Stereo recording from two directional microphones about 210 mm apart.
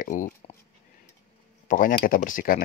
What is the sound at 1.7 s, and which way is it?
Speech, 40° left (ahead or behind).